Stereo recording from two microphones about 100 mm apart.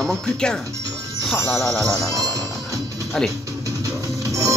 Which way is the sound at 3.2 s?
5° left (ahead or behind).